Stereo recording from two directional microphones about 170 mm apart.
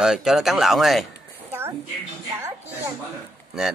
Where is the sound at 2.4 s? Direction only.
15° right (ahead or behind).